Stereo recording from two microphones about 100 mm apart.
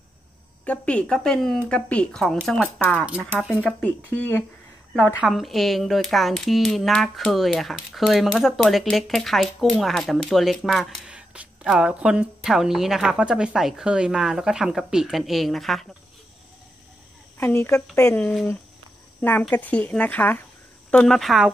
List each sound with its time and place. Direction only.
0.7 s speech: 10° left (ahead or behind)
3.1 s a woman's voice: 15° right (ahead or behind)
3.8 s speech: 15° left (ahead or behind)
5.2 s a woman's voice: centre (ahead or behind)
17.4 s a woman's voice: 25° left (ahead or behind)
18.2 s speech: 5° left (ahead or behind)
19.5 s speech: 15° left (ahead or behind)
20.9 s speech: 5° left (ahead or behind)